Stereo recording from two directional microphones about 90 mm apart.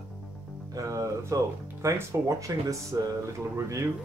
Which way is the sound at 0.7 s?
40° right (ahead or behind).